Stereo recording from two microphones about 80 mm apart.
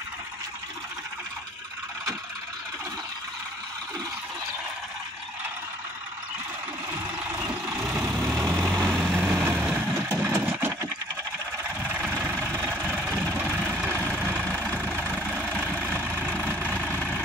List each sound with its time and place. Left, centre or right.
8.4 s vehicle: right
8.6 s vehicle: centre
9.1 s vehicle: right
10.0 s a sound: right
11.8 s engine: right
12.7 s vehicle: centre
16.6 s vehicle: centre